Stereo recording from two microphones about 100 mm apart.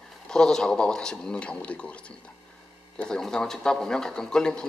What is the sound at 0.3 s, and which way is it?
Speech, 5° left (ahead or behind).